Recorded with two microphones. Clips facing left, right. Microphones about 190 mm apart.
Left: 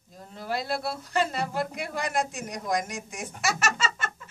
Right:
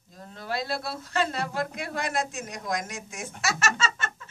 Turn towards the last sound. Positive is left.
turn(degrees=10)  # may be behind; listen again after turning